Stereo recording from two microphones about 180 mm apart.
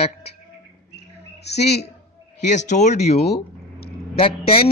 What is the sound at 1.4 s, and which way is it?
Speech, 65° left (ahead or behind).